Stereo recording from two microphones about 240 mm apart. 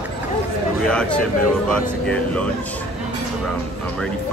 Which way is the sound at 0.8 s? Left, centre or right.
Centre.